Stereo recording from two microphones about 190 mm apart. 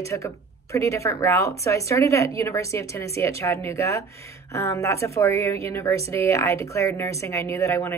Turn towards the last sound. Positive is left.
turn(degrees=15)  # may be behind; listen again after turning